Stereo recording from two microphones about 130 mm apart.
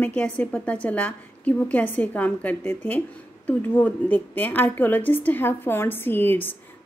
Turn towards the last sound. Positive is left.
turn(degrees=15)  # may be behind; listen again after turning